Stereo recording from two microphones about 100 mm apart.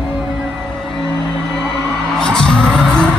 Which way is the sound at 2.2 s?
10° left (ahead or behind).